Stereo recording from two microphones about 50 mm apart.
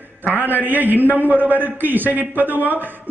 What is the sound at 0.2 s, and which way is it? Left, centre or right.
Speech, left.